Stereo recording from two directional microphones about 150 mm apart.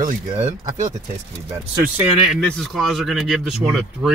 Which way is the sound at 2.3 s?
5° left (ahead or behind).